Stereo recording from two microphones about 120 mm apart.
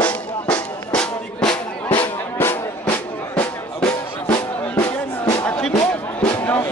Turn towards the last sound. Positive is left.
turn(degrees=15)  # may be behind; listen again after turning